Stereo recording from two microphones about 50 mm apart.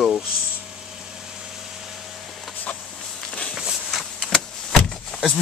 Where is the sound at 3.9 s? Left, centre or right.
Centre.